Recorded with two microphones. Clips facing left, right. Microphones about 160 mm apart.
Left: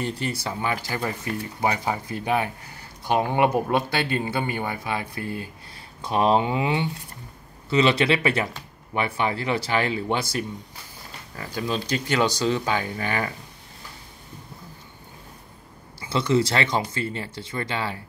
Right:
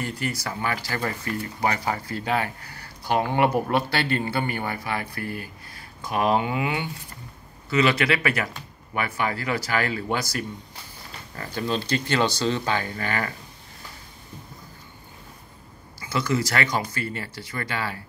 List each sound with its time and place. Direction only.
0.0 s speech: 30° left (ahead or behind)
0.6 s speech: 15° left (ahead or behind)
11.3 s speech: 10° left (ahead or behind)
16.0 s speech: 25° left (ahead or behind)